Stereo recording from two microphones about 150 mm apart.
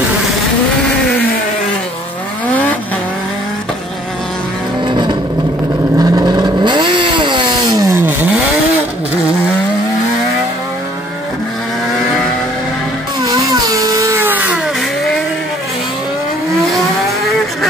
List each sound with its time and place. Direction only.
4.8 s vehicle: 30° right (ahead or behind)
13.5 s music: 20° right (ahead or behind)